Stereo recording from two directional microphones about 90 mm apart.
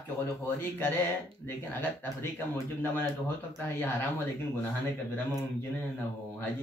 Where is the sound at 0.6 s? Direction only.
25° left (ahead or behind).